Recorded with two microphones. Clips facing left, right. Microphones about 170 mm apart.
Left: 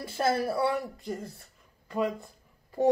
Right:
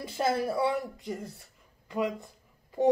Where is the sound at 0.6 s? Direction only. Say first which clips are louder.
Even; 15° right (ahead or behind).